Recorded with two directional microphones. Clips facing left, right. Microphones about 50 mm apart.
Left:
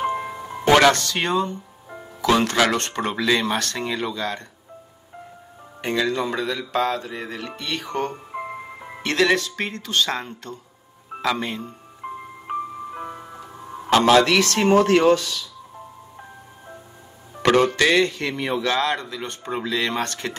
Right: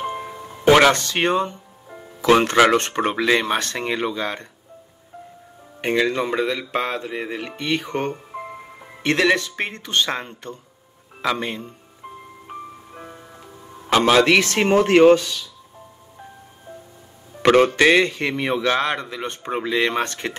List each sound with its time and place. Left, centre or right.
0.0 s music: left
0.9 s a man's voice: right
5.8 s a man's voice: right
11.1 s speech: centre
12.4 s music: left
14.1 s a man's voice: right
17.6 s a man's voice: right